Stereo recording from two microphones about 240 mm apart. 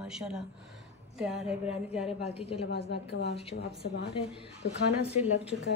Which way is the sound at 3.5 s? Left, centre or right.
Left.